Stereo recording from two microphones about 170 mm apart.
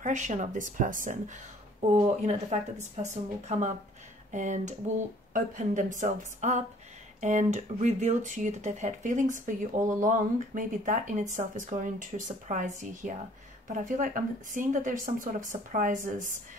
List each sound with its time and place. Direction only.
0.0 s speech: 45° right (ahead or behind)